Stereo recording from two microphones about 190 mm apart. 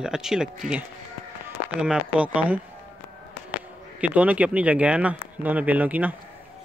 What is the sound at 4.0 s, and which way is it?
Speech, 5° right (ahead or behind).